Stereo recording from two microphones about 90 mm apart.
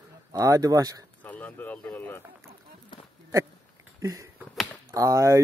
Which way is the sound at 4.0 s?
40° right (ahead or behind).